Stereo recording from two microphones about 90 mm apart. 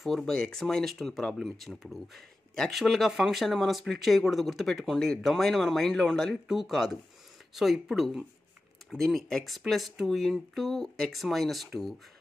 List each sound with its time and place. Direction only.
0.0 s speech: 5° left (ahead or behind)